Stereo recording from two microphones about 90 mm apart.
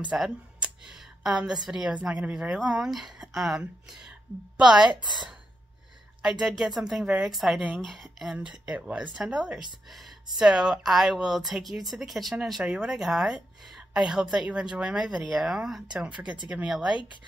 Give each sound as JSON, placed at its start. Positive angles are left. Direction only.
{"t": 0.1, "sound": "speech", "side_deg": -15}
{"t": 0.6, "sound": "a sound", "side_deg": -10}
{"t": 1.7, "sound": "speech", "side_deg": -10}
{"t": 5.0, "sound": "speech", "side_deg": -55}
{"t": 6.6, "sound": "speech", "side_deg": -5}
{"t": 8.3, "sound": "speech", "side_deg": -10}